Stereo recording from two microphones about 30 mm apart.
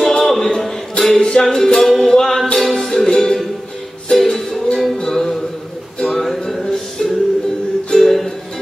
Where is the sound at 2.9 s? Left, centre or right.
Centre.